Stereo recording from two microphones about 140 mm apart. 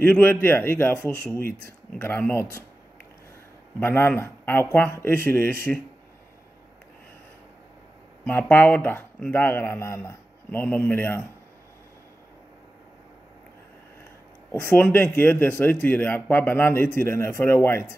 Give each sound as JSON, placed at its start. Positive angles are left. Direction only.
{"t": 0.0, "sound": "speech", "side_deg": 15}
{"t": 3.8, "sound": "speech", "side_deg": 15}
{"t": 8.3, "sound": "speech", "side_deg": 15}
{"t": 14.5, "sound": "speech", "side_deg": 15}